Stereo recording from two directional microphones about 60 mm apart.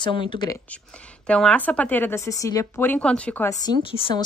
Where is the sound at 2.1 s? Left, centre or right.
Left.